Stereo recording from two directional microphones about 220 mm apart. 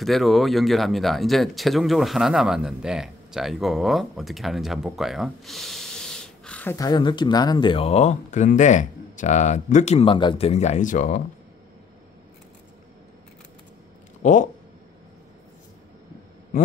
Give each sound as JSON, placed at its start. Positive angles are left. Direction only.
{"t": 0.0, "sound": "speech", "side_deg": 0}
{"t": 14.2, "sound": "speech", "side_deg": 35}